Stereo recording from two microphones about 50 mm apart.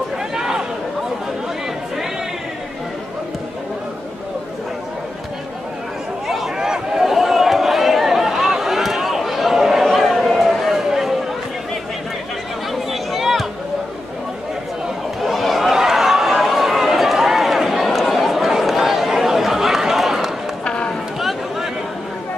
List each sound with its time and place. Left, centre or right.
0.3 s a sound: centre
6.2 s a sound: centre
12.7 s chatter: centre
15.2 s chatter: centre
20.6 s run: left
20.9 s chatter: centre